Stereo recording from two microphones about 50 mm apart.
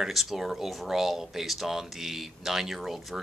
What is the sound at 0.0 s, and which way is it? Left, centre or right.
Speech, centre.